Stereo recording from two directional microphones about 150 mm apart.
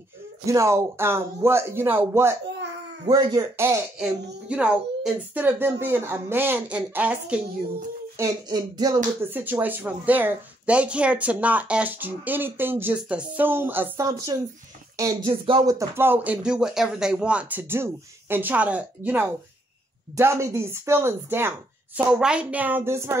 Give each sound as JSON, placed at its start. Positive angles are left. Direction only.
{"t": 0.5, "sound": "a woman's voice", "side_deg": -20}
{"t": 3.1, "sound": "music", "side_deg": -25}
{"t": 4.0, "sound": "a woman's voice", "side_deg": -5}
{"t": 8.2, "sound": "music", "side_deg": -25}
{"t": 9.2, "sound": "a woman's voice", "side_deg": -15}
{"t": 15.2, "sound": "speech", "side_deg": -35}
{"t": 15.7, "sound": "a woman's voice", "side_deg": -20}